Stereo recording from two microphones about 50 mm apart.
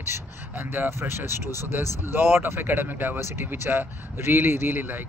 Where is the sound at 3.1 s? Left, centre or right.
Right.